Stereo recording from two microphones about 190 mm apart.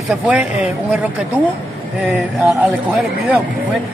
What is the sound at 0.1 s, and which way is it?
Speech, 5° right (ahead or behind).